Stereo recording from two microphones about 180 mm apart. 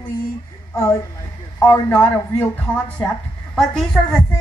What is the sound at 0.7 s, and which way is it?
A woman's voice, 15° left (ahead or behind).